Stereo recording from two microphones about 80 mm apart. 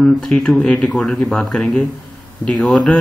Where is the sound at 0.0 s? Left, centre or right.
Centre.